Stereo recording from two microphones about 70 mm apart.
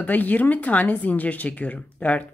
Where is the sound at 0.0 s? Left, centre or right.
Left.